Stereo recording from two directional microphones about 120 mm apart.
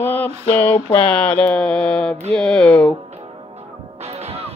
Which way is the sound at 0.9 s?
10° left (ahead or behind).